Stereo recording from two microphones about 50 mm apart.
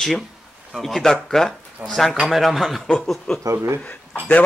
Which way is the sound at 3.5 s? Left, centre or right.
Right.